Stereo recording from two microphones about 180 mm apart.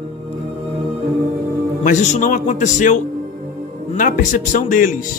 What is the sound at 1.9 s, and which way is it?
Speech, 45° left (ahead or behind).